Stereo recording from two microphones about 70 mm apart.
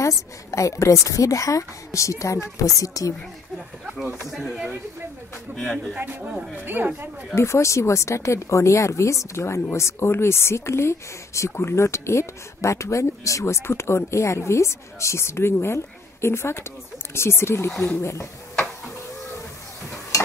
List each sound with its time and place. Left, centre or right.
0.5 s speech: left
4.3 s speech: centre
5.6 s speech: centre
5.9 s speech: right
7.3 s speech: left